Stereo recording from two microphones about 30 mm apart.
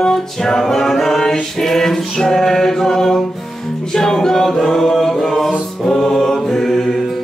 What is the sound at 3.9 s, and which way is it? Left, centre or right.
A capella, centre.